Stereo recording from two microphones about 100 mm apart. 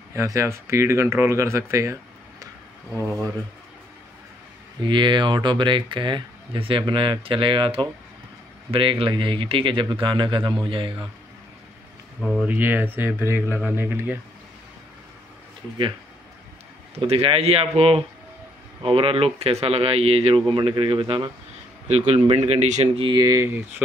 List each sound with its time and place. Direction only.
0.1 s speech: 30° right (ahead or behind)
4.8 s speech: 50° right (ahead or behind)
12.2 s speech: centre (ahead or behind)
12.4 s speech: 20° right (ahead or behind)
17.0 s speech: 85° right
18.8 s speech: 65° right (ahead or behind); by 20.3 s 90° right
20.4 s speech: 50° right (ahead or behind)
21.8 s speech: 90° right; by 23.1 s 65° right (ahead or behind)
23.1 s speech: 40° right (ahead or behind)
23.4 s speech: 20° right (ahead or behind)